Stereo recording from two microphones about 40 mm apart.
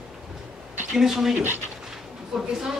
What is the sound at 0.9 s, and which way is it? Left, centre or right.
A man's voice, centre.